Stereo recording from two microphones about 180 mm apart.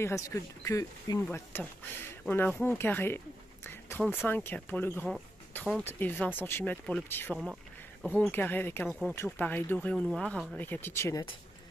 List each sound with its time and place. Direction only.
0.0 s speech: 15° left (ahead or behind)
8.0 s speech: 5° right (ahead or behind)
8.3 s speech: 10° left (ahead or behind)